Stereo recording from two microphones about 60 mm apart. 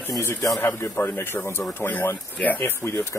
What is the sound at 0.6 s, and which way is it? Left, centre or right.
Speech, left.